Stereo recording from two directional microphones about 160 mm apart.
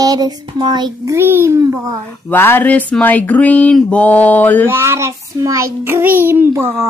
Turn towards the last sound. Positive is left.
turn(degrees=-15)  # may be behind; listen again after turning